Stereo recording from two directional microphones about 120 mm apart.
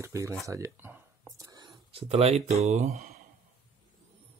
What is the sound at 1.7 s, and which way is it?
Speech, 50° right (ahead or behind).